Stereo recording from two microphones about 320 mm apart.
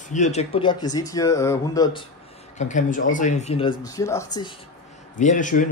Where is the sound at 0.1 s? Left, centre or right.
Left.